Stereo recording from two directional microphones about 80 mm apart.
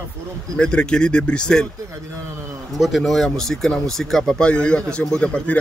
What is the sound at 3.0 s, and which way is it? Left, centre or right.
Speech, centre.